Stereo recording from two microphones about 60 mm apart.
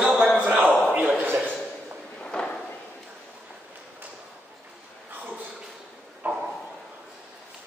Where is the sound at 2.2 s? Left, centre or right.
Centre.